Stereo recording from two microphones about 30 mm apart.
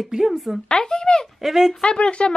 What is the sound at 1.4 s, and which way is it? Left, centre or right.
Speech, centre.